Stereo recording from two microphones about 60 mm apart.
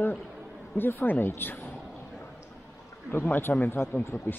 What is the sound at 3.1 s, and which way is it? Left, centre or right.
Speech, left.